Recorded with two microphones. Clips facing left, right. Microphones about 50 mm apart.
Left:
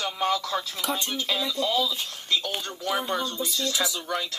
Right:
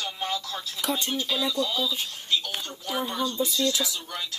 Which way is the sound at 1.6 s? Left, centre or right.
Left.